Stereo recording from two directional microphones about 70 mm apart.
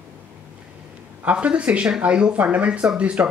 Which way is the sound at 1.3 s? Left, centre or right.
Centre.